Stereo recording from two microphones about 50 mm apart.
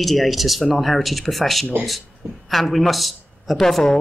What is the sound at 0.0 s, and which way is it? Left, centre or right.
A woman's voice, centre.